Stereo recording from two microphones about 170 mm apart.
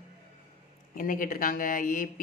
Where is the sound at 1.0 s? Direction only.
55° left (ahead or behind).